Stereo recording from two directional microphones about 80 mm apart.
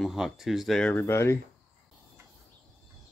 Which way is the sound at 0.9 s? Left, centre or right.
Left.